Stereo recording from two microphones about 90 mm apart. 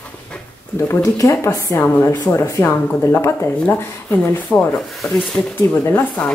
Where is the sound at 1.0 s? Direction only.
40° left (ahead or behind).